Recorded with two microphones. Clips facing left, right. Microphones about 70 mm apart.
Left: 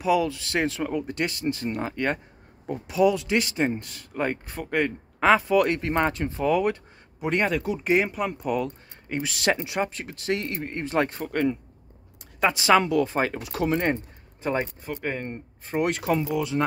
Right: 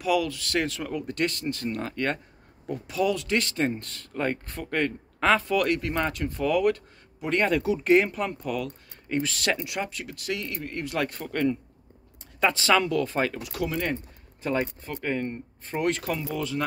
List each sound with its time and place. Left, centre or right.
0.0 s speech: left
7.4 s speech: centre; by 11.2 s left
11.2 s speech: centre; by 13.9 s left
14.4 s speech: left